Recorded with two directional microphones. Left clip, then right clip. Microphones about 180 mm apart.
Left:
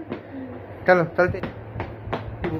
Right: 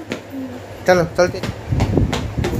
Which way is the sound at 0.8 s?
20° right (ahead or behind).